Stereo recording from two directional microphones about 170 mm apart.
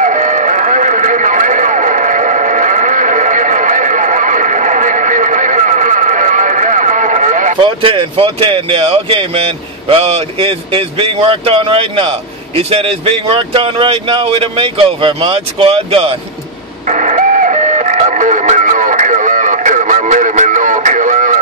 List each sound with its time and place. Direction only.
0.0 s music: 45° right (ahead or behind)
7.6 s speech: 30° right (ahead or behind)
16.9 s radio: 45° right (ahead or behind)